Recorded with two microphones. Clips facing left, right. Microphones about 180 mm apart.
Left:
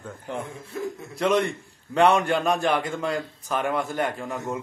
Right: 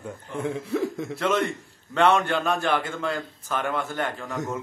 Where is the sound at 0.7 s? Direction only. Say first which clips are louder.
Right 3 dB; 90° right.